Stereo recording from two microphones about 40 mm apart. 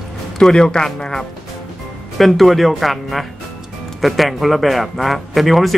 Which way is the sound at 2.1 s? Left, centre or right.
Centre.